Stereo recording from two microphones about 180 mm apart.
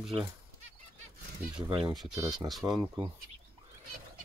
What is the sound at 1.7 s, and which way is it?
Speech, 25° right (ahead or behind).